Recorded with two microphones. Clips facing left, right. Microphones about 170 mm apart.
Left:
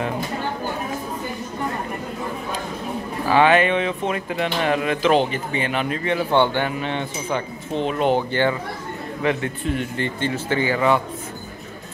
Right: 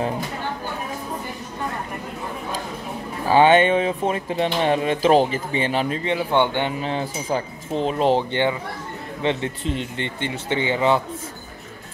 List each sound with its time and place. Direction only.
3.3 s speech: 30° right (ahead or behind)
6.0 s speech: 15° right (ahead or behind)
6.8 s speech: 35° right (ahead or behind)